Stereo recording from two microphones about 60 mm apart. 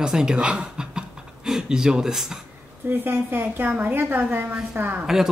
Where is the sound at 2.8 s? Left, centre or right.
Right.